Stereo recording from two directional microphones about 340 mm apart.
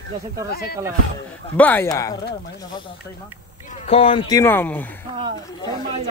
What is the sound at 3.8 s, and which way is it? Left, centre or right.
Speech, centre.